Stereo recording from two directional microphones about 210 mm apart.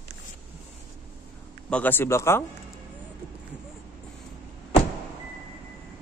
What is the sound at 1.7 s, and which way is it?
Speech, 10° left (ahead or behind).